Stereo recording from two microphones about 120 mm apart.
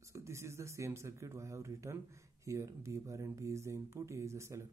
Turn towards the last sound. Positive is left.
turn(degrees=-25)  # may be behind; listen again after turning